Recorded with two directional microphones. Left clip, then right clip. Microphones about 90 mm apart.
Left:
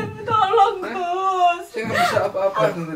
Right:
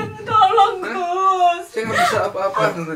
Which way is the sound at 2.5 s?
15° left (ahead or behind).